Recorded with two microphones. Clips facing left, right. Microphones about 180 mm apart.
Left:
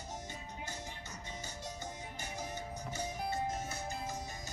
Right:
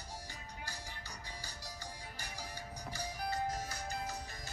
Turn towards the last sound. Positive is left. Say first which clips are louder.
# left 1 dB
turn(degrees=15)  # may be behind; listen again after turning